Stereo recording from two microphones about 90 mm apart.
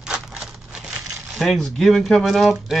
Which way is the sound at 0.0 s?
5° right (ahead or behind).